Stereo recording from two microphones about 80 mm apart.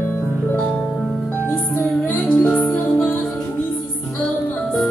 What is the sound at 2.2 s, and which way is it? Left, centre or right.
Music, centre.